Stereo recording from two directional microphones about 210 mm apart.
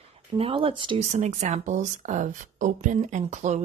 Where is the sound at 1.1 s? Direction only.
35° right (ahead or behind).